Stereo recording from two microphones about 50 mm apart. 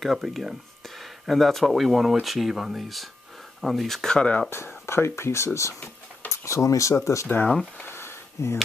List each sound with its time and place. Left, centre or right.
0.2 s speech: centre
4.5 s speech: left
6.2 s speech: left
7.8 s a sound: left